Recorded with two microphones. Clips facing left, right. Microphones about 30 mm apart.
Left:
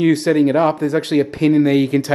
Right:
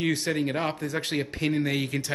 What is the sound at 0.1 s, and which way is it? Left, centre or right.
Speech, left.